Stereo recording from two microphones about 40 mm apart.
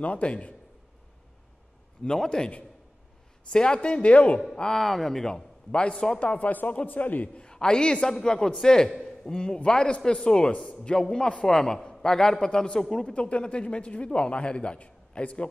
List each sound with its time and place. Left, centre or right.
0.0 s a man's voice: left
2.2 s a man's voice: centre
3.5 s a man's voice: left
4.7 s a man's voice: centre
5.7 s a man's voice: left
6.5 s a man's voice: left
7.3 s a man's voice: centre
9.0 s a sound: centre
9.4 s a man's voice: left
11.0 s a man's voice: centre; by 15.4 s left